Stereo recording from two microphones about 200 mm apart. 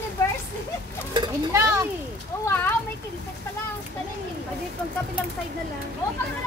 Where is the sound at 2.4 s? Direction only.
10° left (ahead or behind).